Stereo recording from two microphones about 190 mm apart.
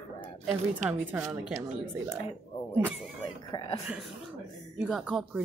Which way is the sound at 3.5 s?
20° left (ahead or behind).